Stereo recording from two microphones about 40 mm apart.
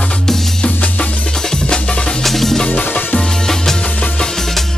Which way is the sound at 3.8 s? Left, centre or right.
Left.